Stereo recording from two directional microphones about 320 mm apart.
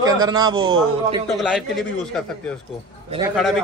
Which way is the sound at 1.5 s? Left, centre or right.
Centre.